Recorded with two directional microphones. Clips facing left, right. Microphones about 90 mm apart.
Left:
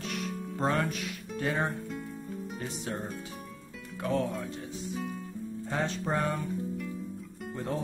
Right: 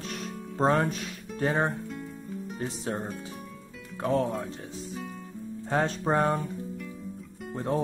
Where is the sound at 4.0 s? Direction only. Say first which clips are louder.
Right 4 dB; 35° right (ahead or behind).